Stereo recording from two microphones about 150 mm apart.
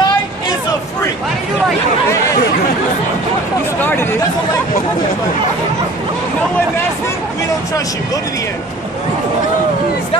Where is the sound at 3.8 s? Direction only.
15° left (ahead or behind).